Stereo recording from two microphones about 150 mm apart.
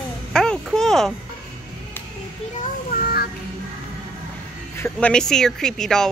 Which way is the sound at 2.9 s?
85° left.